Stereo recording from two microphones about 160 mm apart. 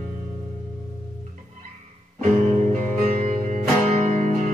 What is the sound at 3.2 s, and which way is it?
Music, 45° right (ahead or behind).